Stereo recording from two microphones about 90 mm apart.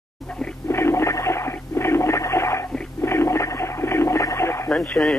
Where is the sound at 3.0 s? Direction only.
30° left (ahead or behind).